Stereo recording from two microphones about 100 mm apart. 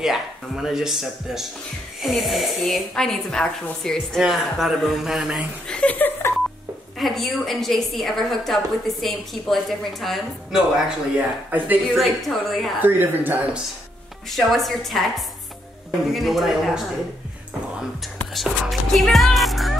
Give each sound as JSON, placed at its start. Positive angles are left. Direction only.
{"t": 0.0, "sound": "a woman's voice", "side_deg": -5}
{"t": 5.8, "sound": "a sound", "side_deg": 15}
{"t": 7.0, "sound": "a woman's voice", "side_deg": 0}
{"t": 11.1, "sound": "speech", "side_deg": -15}
{"t": 12.0, "sound": "a woman's voice", "side_deg": 0}
{"t": 12.8, "sound": "speech", "side_deg": -20}
{"t": 14.3, "sound": "a woman's voice", "side_deg": 0}
{"t": 18.2, "sound": "speech", "side_deg": 0}